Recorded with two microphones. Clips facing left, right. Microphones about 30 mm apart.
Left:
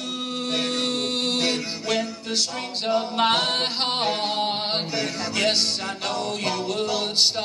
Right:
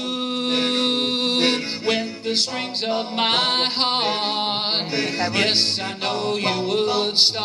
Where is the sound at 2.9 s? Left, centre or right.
Right.